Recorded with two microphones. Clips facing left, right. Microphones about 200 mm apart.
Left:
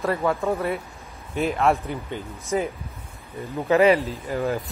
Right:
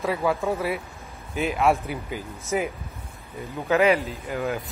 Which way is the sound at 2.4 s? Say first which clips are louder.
Left 1 dB; 30° left (ahead or behind).